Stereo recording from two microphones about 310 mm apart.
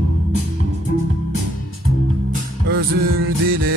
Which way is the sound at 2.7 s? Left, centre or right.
Right.